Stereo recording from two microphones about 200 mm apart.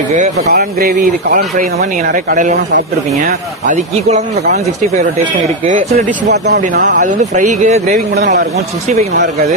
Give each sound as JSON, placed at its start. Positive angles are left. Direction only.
{"t": 0.5, "sound": "speech", "side_deg": -45}
{"t": 5.7, "sound": "speech", "side_deg": -45}
{"t": 7.0, "sound": "speech", "side_deg": -35}